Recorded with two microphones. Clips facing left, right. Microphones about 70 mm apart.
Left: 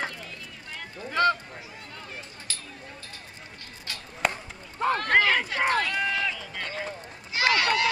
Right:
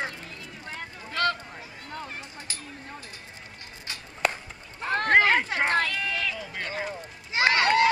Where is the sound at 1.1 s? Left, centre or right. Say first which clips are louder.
Left 4 dB; left.